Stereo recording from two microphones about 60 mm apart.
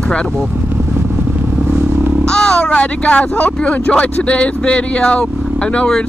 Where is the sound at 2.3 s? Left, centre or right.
Centre.